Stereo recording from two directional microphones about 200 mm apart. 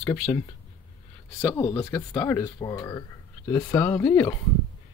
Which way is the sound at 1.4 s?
10° left (ahead or behind).